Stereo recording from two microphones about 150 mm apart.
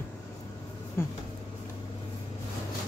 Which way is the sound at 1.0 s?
15° left (ahead or behind).